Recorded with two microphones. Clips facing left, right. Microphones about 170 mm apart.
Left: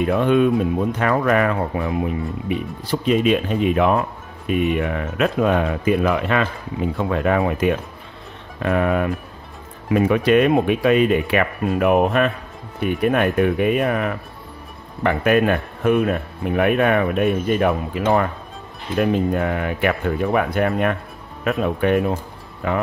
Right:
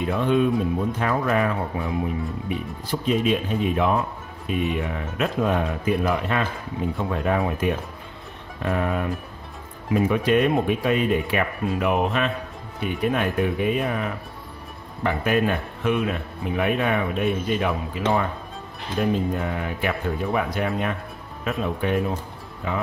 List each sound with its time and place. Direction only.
0.0 s speech: 65° left (ahead or behind)
0.9 s speech: 75° left (ahead or behind)
8.6 s speech: 75° left (ahead or behind); by 18.2 s 55° left (ahead or behind)
18.9 s speech: 65° left (ahead or behind)